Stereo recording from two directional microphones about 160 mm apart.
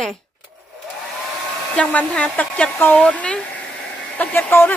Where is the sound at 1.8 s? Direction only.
10° left (ahead or behind).